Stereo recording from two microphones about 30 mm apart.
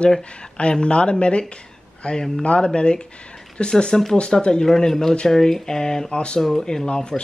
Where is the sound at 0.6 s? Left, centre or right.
Left.